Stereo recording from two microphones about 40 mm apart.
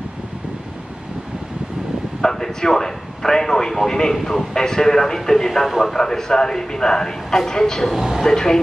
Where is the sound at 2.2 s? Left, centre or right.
Centre.